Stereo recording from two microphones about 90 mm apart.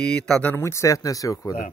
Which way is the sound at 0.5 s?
30° left (ahead or behind).